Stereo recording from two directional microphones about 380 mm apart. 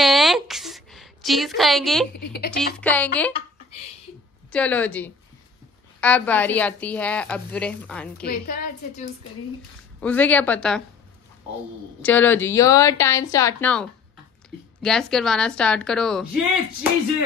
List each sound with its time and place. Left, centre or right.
0.0 s a sound: centre
2.1 s a woman's voice: left
2.8 s a woman's voice: centre
4.5 s a woman's voice: centre
8.3 s a woman's voice: left
9.9 s a woman's voice: centre
12.0 s a woman's voice: centre